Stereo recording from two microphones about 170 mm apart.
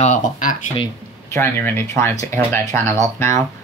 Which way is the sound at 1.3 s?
15° left (ahead or behind).